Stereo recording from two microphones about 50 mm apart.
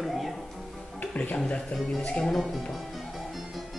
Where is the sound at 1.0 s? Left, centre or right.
Left.